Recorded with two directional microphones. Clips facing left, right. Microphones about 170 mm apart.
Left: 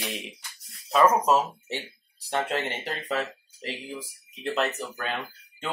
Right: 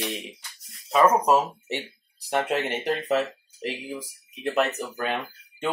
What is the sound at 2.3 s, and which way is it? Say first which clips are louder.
Speech: right 3 dB; 15° right (ahead or behind).